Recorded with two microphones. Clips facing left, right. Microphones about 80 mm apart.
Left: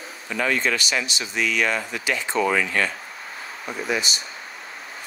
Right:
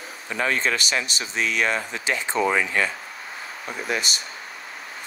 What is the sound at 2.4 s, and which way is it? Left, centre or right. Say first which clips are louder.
Speech: even; centre.